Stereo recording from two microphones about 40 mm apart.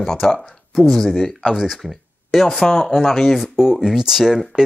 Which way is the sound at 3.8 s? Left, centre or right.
Centre.